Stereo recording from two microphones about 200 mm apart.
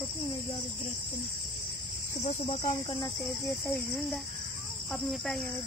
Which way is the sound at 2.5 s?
25° left (ahead or behind).